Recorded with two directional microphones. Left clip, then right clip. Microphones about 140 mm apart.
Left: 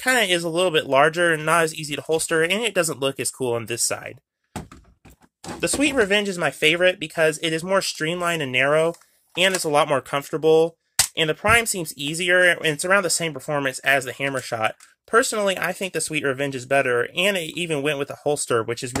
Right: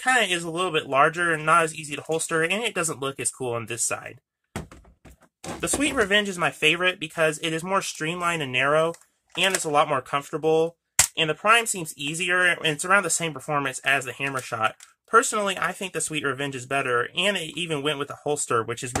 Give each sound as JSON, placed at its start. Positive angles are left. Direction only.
{"t": 0.0, "sound": "speech", "side_deg": 40}
{"t": 5.8, "sound": "speech", "side_deg": 25}
{"t": 9.3, "sound": "speech", "side_deg": 45}